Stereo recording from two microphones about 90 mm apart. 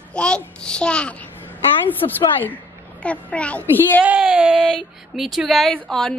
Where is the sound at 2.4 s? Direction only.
15° left (ahead or behind).